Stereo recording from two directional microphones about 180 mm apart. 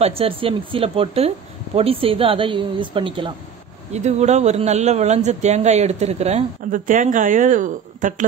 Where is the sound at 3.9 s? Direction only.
40° right (ahead or behind).